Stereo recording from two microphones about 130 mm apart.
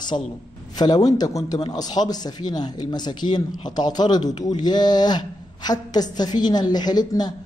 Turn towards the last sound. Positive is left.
turn(degrees=30)  # may be behind; listen again after turning